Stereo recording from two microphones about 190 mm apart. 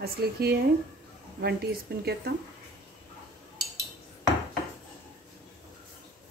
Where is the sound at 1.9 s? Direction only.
55° right (ahead or behind).